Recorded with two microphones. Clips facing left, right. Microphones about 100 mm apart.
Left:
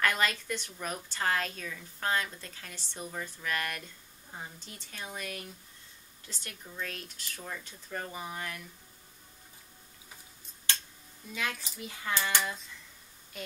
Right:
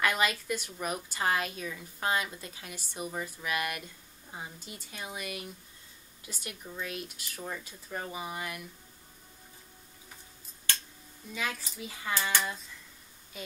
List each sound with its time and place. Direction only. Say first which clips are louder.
0.0 s speech: right 1 dB; 5° right (ahead or behind)
11.3 s a child's voice: even; centre (ahead or behind)